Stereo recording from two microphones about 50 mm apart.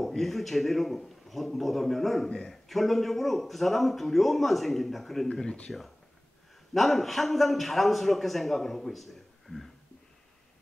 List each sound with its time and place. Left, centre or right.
0.0 s a man's voice: centre
2.2 s a man's voice: centre
2.5 s a man's voice: centre
5.3 s speech: centre
6.7 s a man's voice: centre